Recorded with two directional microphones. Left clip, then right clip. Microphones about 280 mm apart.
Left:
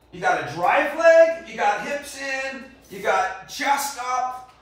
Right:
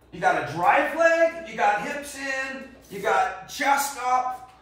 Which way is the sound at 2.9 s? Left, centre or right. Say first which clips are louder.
Left 1 dB; centre.